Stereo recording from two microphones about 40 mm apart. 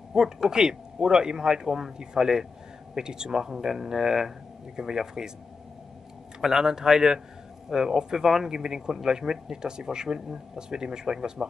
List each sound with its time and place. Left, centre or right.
0.1 s speech: centre
6.4 s speech: centre